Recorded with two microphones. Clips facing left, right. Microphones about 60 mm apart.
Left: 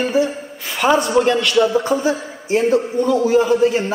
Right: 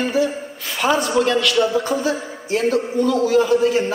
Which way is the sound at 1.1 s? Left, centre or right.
Centre.